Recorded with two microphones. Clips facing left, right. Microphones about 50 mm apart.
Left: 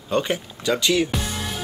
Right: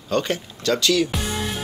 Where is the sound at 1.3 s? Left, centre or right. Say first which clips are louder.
Right 3 dB; centre.